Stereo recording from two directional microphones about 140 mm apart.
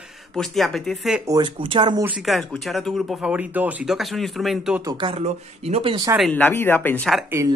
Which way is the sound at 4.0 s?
Centre (ahead or behind).